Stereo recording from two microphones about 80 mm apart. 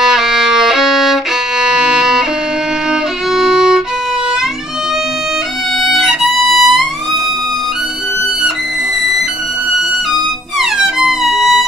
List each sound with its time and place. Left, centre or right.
0.0 s violin: centre
5.9 s violin: centre
10.6 s music: centre